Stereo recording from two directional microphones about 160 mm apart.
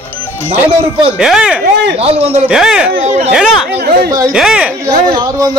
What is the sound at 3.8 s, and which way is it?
Speech, 75° right (ahead or behind).